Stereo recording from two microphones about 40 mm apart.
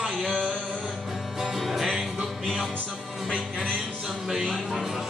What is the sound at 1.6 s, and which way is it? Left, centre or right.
Music, centre.